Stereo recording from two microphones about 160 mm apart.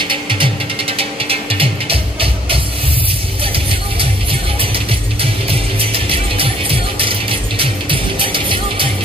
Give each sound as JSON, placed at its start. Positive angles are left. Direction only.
{"t": 0.0, "sound": "music", "side_deg": -30}
{"t": 4.0, "sound": "music", "side_deg": -35}